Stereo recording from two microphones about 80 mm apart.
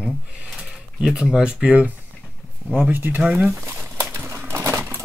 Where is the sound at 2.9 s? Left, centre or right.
Right.